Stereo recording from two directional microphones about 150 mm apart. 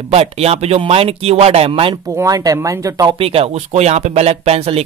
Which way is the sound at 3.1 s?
40° right (ahead or behind).